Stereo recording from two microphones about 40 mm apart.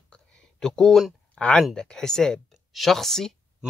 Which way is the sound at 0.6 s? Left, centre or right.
Centre.